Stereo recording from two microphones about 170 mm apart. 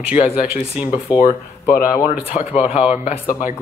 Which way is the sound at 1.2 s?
55° left (ahead or behind).